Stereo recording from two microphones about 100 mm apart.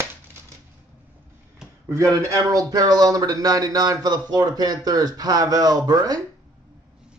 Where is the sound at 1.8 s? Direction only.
30° right (ahead or behind).